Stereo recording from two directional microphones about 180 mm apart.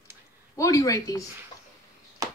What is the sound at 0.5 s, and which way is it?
Speech, 20° left (ahead or behind).